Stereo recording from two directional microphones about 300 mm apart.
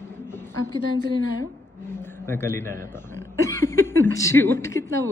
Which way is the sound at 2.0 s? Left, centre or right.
Centre.